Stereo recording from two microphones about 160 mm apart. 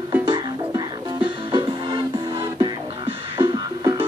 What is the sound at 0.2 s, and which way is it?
Music, 25° right (ahead or behind).